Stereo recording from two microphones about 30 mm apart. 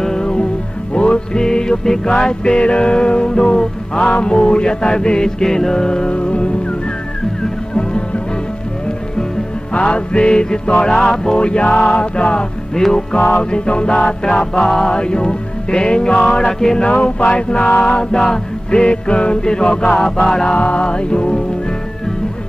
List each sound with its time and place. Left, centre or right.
0.0 s music: left
9.7 s music: left; by 11.3 s centre
11.3 s music: left
12.8 s music: centre
13.3 s music: left
14.2 s music: left
14.9 s music: left
16.7 s music: left
17.8 s music: left